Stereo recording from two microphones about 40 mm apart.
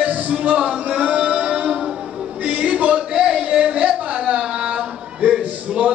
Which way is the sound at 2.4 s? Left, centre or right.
Right.